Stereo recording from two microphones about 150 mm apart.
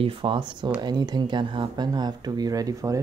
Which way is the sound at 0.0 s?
35° right (ahead or behind).